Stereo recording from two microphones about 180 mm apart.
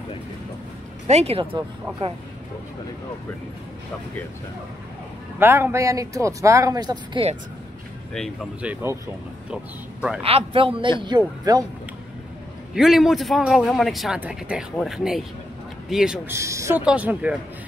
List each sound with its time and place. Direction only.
1.0 s speech: 35° right (ahead or behind)
5.4 s speech: 15° right (ahead or behind)
8.1 s a man's voice: centre (ahead or behind)
10.2 s a man's voice: 30° right (ahead or behind)
12.7 s a man's voice: centre (ahead or behind)
16.3 s speech: 15° right (ahead or behind)